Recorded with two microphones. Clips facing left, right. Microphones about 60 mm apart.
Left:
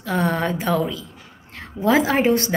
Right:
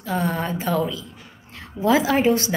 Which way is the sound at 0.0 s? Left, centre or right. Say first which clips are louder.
Left 3 dB; left.